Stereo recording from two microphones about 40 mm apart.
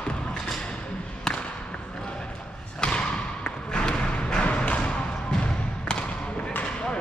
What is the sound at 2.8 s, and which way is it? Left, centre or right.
Thump, left.